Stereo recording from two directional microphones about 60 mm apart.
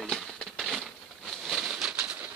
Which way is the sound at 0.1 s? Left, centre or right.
Centre.